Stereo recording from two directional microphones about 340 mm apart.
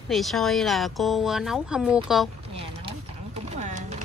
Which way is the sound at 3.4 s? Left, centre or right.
Right.